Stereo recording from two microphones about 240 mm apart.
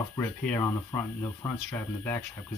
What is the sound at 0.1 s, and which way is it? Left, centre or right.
Speech, centre.